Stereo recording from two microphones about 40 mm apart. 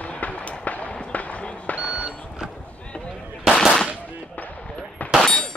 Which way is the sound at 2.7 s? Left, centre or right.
Left.